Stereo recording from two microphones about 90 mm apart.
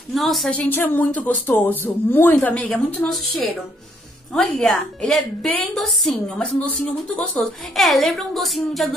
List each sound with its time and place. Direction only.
0.1 s a woman's voice: centre (ahead or behind)
0.6 s speech: 20° left (ahead or behind)
3.1 s a woman's voice: centre (ahead or behind)
4.6 s a woman's voice: 5° left (ahead or behind)